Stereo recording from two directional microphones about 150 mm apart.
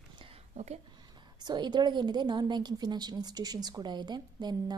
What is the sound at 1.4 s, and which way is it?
A woman's voice, 30° right (ahead or behind).